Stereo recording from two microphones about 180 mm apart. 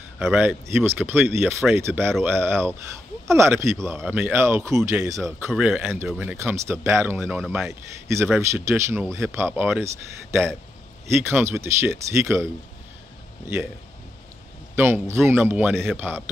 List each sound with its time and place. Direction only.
0.2 s speech: 5° right (ahead or behind)
5.5 s speech: 5° right (ahead or behind)
8.4 s speech: 15° right (ahead or behind)
14.8 s speech: 15° right (ahead or behind)